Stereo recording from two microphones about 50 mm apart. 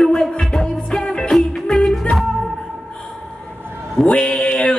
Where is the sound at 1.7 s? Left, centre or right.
Centre.